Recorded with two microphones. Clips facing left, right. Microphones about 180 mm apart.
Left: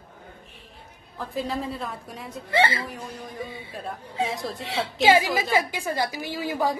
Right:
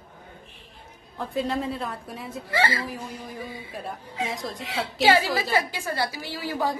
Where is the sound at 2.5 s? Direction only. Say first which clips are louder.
Left 3 dB; 25° left (ahead or behind).